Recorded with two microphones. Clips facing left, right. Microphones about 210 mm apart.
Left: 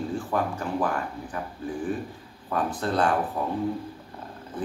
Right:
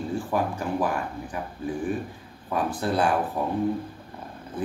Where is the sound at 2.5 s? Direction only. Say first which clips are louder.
Right 1 dB; 10° right (ahead or behind).